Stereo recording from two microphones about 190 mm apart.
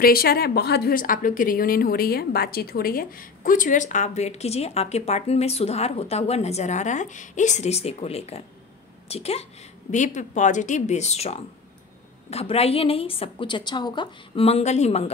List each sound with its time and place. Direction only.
0.0 s a woman's voice: 50° left (ahead or behind); by 15.0 s 35° left (ahead or behind)